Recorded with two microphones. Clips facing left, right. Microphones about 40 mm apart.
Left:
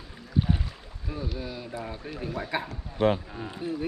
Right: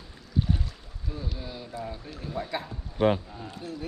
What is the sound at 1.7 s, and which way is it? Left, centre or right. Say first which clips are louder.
A man's voice: left 1 dB; centre.